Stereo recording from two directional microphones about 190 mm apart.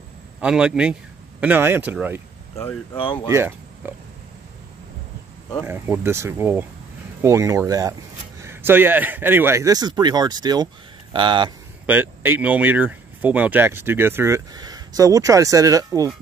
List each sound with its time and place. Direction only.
0.4 s a man's voice: 5° right (ahead or behind)
2.5 s speech: 15° left (ahead or behind)
3.0 s speech: 25° left (ahead or behind)
3.3 s speech: 15° right (ahead or behind)
5.7 s speech: 10° right (ahead or behind)
11.8 s speech: 10° right (ahead or behind)